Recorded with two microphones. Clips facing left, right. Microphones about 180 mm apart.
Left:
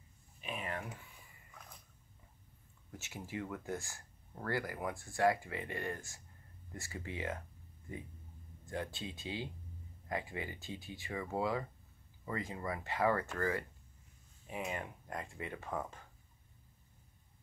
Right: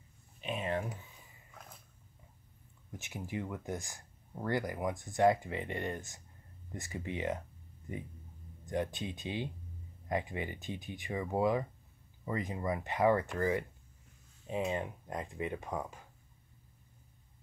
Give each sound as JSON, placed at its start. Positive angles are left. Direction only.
{"t": 0.4, "sound": "a sound", "side_deg": -25}
{"t": 2.9, "sound": "speech", "side_deg": -15}
{"t": 8.6, "sound": "speech", "side_deg": -20}